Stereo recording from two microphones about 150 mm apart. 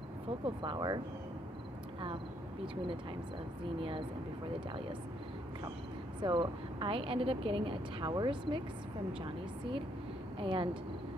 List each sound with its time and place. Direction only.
0.6 s speech: 30° right (ahead or behind)
6.2 s speech: 35° right (ahead or behind)
10.4 s speech: 35° right (ahead or behind)